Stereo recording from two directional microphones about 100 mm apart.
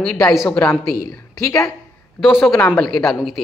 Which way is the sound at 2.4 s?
20° left (ahead or behind).